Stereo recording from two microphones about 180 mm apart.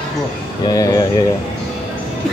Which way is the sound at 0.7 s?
20° left (ahead or behind).